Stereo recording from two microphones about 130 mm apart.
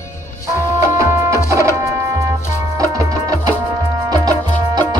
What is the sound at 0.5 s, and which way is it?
Music, 20° right (ahead or behind).